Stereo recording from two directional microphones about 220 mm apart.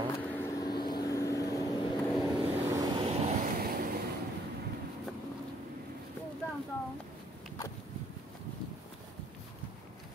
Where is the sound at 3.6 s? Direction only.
40° right (ahead or behind).